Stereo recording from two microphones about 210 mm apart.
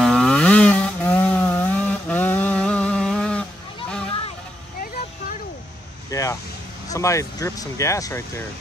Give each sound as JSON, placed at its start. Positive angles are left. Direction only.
{"t": 0.0, "sound": "a sound", "side_deg": 5}
{"t": 6.0, "sound": "vehicle", "side_deg": 15}
{"t": 6.9, "sound": "speech", "side_deg": 15}